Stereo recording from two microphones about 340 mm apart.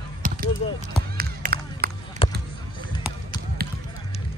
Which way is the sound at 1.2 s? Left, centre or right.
Right.